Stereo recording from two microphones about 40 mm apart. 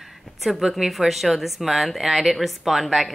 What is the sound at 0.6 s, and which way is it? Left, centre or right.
Speech, centre.